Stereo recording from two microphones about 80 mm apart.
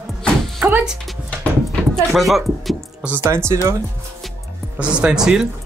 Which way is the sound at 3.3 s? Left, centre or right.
Right.